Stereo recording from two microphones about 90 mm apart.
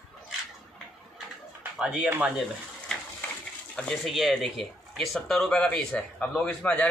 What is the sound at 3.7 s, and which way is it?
Speech, 10° left (ahead or behind).